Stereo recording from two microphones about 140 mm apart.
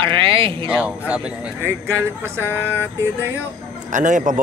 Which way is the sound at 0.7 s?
10° right (ahead or behind).